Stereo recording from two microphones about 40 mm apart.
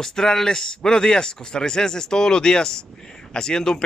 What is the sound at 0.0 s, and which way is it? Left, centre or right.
Speech, centre.